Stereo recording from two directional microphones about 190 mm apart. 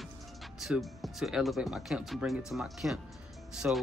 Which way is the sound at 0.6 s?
Centre (ahead or behind).